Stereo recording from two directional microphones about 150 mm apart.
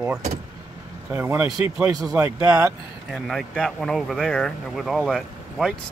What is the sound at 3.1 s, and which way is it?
Speech, centre (ahead or behind).